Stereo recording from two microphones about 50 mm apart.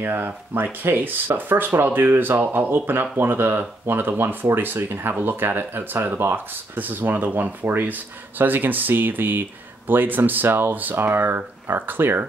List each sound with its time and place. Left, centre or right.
0.0 s speech: right